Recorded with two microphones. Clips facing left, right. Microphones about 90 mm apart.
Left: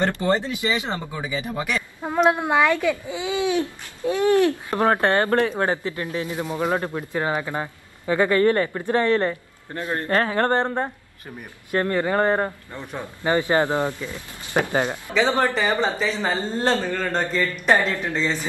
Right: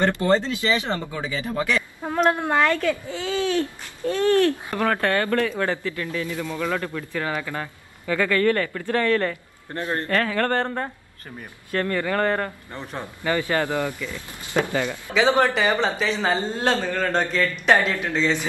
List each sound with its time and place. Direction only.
0.2 s a child's voice: 15° left (ahead or behind)
10.0 s speech: 30° left (ahead or behind)
15.1 s speech: 10° right (ahead or behind)
17.0 s a child's voice: 10° left (ahead or behind)